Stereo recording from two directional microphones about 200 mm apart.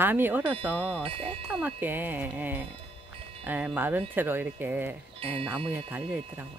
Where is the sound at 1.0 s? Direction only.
25° right (ahead or behind).